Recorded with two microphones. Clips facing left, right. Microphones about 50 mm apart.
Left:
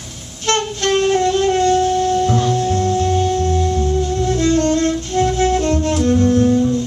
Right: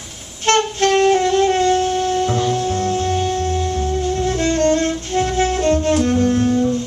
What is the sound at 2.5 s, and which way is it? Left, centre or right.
Music, right.